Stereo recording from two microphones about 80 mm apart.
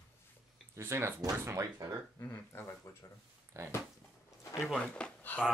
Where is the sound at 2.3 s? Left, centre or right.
Left.